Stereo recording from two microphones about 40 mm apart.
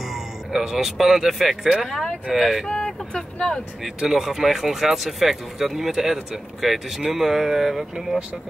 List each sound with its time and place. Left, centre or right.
0.0 s speech: centre
2.7 s vehicle: left
4.1 s speech: centre